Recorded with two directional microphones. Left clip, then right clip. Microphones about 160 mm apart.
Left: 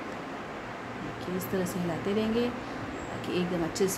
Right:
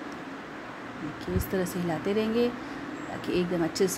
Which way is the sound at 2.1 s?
30° right (ahead or behind).